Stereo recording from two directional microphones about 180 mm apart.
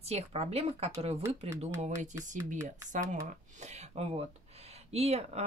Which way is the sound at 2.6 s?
45° right (ahead or behind).